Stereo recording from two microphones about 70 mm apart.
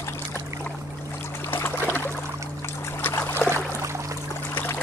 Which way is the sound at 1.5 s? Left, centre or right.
Left.